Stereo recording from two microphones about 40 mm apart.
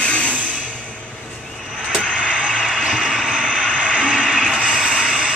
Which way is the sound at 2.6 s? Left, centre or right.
Centre.